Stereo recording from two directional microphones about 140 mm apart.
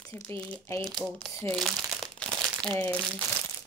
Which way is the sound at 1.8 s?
Centre (ahead or behind).